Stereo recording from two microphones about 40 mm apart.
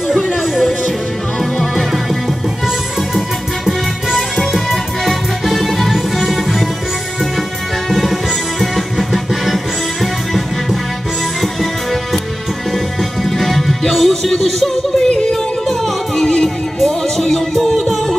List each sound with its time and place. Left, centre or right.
0.6 s music: centre
4.1 s music: centre
7.9 s music: centre
11.4 s music: centre
15.0 s music: centre